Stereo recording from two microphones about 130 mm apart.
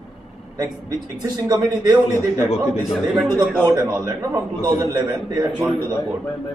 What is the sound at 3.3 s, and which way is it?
A man's voice, 30° right (ahead or behind).